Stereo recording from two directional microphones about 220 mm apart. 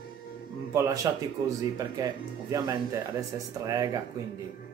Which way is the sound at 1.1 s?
15° right (ahead or behind).